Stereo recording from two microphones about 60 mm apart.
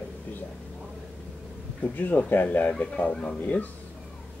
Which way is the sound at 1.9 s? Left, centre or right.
Left.